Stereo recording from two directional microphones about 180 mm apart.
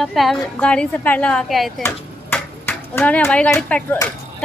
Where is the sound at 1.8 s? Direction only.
10° left (ahead or behind).